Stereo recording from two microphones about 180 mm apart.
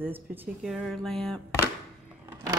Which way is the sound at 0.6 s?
Centre (ahead or behind).